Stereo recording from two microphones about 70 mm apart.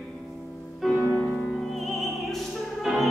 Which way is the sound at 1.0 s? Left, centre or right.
Centre.